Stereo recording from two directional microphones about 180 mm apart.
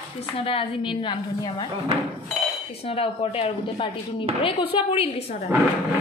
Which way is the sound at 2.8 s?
30° left (ahead or behind).